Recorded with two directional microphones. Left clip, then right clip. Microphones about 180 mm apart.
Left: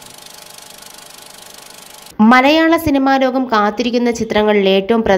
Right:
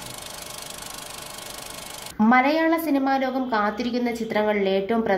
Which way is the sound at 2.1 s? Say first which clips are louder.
Left 9 dB; 30° left (ahead or behind).